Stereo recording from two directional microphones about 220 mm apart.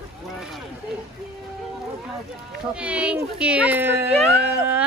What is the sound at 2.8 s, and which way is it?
Speech, 5° right (ahead or behind).